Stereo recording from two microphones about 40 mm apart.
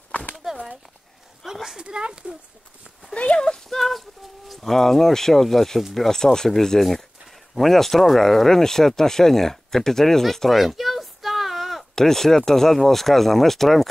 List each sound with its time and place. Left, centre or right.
0.4 s a sound: centre
1.4 s a woman's voice: centre
1.8 s speech: right
3.3 s speech: centre
10.3 s a sound: centre
11.9 s speech: centre